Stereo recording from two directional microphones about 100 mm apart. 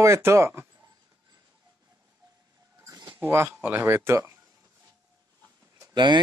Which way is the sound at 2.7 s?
30° right (ahead or behind).